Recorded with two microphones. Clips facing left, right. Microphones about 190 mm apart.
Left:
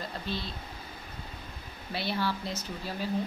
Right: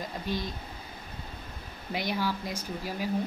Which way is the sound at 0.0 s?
15° right (ahead or behind).